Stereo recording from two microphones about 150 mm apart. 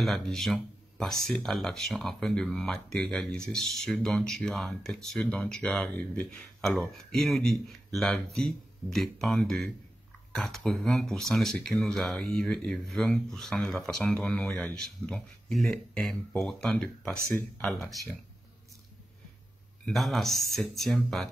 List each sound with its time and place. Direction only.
0.0 s speech: centre (ahead or behind)
17.6 s speech: centre (ahead or behind)
19.9 s speech: centre (ahead or behind)